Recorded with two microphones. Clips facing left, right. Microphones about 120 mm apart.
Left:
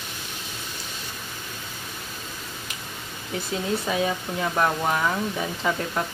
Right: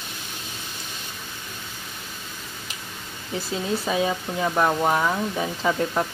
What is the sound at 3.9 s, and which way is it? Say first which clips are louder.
Speech: right 2 dB; 20° right (ahead or behind).